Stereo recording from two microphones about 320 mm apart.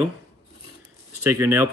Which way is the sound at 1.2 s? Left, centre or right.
Centre.